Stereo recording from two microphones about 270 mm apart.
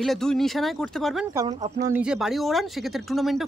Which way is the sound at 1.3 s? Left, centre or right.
Centre.